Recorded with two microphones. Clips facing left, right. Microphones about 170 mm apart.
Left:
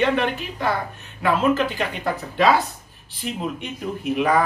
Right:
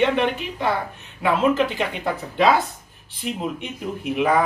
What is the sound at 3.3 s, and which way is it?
Speech, 15° right (ahead or behind).